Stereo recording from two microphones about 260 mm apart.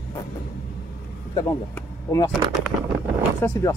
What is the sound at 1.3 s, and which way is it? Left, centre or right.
Speech, centre.